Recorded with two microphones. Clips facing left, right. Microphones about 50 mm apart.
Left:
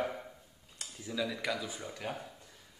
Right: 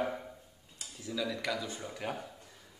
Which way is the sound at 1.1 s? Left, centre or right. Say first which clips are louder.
Even; centre.